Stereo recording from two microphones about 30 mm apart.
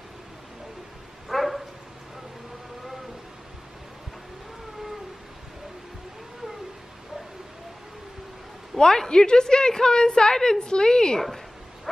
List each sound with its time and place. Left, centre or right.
1.3 s bow-wow: centre
8.7 s a woman's voice: centre
11.2 s dog: centre